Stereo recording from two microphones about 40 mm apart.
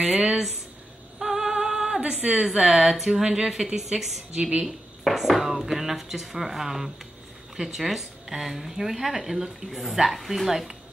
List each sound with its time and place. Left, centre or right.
1.2 s female singing: centre
1.5 s music: centre
2.0 s a sound: right
2.4 s speech: centre
4.4 s speech: right
4.6 s speech: centre